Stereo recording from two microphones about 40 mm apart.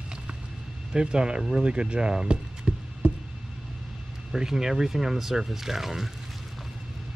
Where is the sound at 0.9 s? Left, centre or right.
Right.